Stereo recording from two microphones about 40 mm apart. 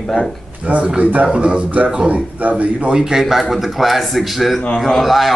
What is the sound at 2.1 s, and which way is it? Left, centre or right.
Speech, right.